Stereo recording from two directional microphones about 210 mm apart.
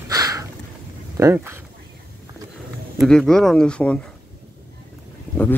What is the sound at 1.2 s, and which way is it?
Speech, 10° right (ahead or behind).